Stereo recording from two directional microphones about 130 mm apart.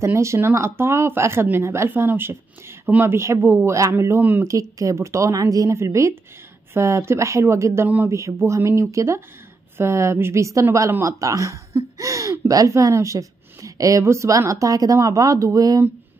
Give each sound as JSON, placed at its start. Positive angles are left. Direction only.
{"t": 0.0, "sound": "a woman's voice", "side_deg": -20}